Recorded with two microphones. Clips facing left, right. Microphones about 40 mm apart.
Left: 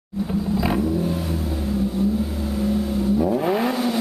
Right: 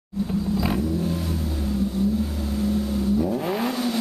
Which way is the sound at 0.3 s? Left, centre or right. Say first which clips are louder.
Left 3 dB; centre.